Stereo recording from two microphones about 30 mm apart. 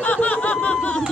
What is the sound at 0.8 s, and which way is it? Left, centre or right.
Speech, left.